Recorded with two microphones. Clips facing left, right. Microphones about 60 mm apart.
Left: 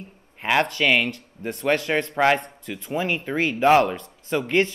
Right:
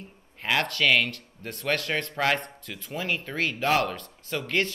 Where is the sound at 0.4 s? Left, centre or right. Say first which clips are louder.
Left 4 dB; left.